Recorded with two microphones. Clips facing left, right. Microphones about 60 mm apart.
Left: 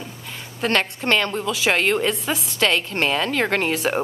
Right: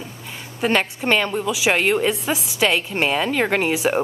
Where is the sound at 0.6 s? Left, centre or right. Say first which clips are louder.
Right 2 dB; centre.